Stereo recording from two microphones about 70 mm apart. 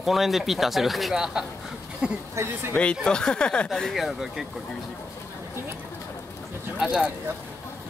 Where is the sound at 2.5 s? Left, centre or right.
Right.